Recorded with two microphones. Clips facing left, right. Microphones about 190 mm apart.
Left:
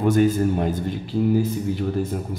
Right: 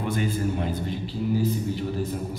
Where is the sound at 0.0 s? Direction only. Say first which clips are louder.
Left 8 dB; 45° left (ahead or behind).